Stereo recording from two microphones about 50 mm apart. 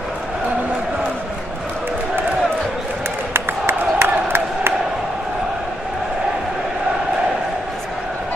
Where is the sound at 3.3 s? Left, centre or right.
Right.